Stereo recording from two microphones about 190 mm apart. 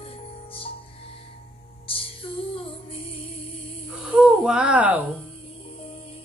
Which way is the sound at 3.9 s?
5° right (ahead or behind).